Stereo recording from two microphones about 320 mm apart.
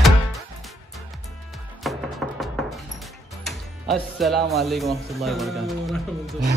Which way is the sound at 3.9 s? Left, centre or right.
Centre.